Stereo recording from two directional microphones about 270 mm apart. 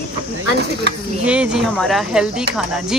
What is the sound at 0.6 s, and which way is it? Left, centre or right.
Speech, right.